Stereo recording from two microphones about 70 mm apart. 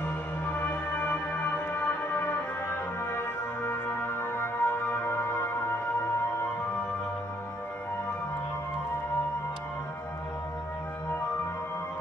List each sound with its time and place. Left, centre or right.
0.0 s music: left
3.6 s music: left